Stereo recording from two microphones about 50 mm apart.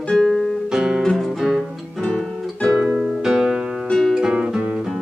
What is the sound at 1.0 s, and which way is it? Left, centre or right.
Music, centre.